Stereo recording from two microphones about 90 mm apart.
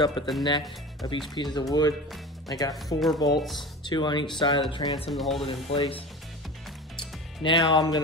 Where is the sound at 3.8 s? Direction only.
55° left (ahead or behind).